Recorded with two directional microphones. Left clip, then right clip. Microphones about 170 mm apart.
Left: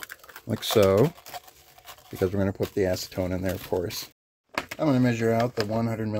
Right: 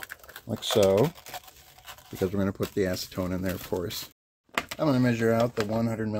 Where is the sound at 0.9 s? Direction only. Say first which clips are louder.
Left 2 dB; centre (ahead or behind).